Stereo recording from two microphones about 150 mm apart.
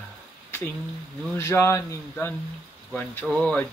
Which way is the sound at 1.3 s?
20° left (ahead or behind).